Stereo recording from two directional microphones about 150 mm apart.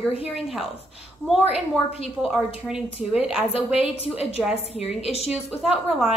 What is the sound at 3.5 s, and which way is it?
Speech, 40° left (ahead or behind).